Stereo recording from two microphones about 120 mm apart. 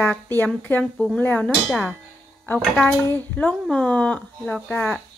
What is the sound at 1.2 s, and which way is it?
Speech, 15° left (ahead or behind).